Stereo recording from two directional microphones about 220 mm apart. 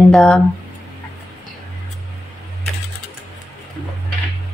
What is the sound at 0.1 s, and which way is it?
Speech, centre (ahead or behind).